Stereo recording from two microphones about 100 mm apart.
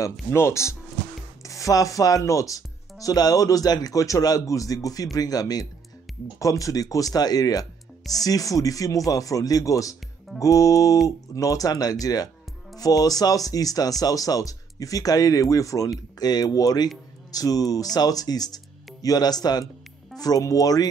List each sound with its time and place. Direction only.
0.0 s speech: 30° left (ahead or behind)